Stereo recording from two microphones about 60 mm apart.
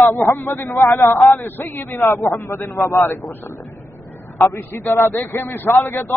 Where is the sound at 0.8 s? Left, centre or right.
Left.